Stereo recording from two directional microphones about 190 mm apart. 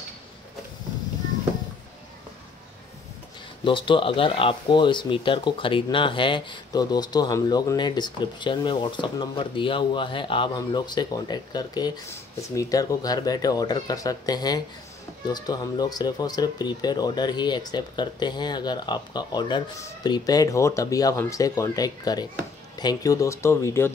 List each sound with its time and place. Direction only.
3.6 s speech: 25° left (ahead or behind)